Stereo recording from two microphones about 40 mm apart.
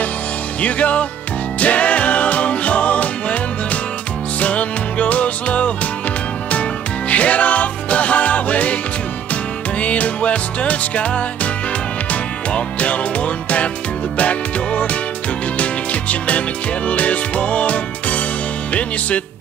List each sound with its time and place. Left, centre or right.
0.6 s music: left
4.4 s music: left
7.1 s music: left